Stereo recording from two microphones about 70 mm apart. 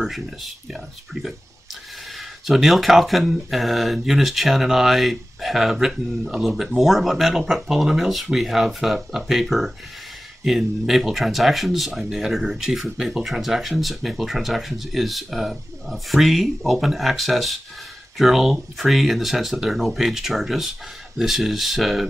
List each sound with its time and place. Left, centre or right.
0.0 s speech: centre